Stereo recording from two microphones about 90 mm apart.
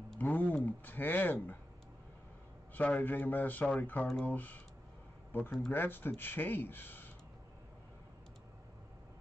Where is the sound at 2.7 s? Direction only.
20° left (ahead or behind).